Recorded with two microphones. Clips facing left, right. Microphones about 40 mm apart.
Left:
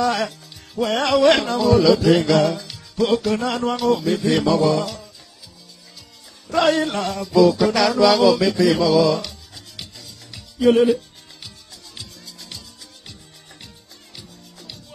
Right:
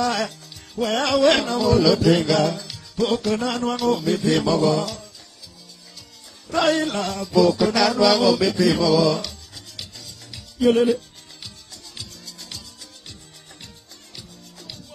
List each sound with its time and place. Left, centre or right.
0.0 s speech: centre
6.5 s music: centre
12.0 s music: centre
14.1 s music: centre